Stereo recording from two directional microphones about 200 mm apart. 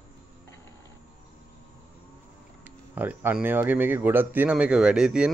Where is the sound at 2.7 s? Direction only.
10° right (ahead or behind).